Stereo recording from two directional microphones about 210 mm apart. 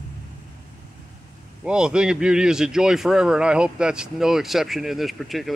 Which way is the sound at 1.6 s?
5° right (ahead or behind).